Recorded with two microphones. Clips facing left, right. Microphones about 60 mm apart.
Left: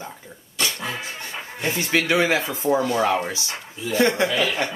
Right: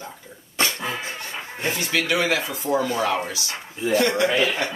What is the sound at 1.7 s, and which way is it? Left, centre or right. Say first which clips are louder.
Speech: left 3 dB; left.